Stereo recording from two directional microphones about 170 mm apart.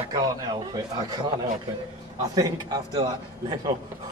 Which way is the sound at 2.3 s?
20° right (ahead or behind).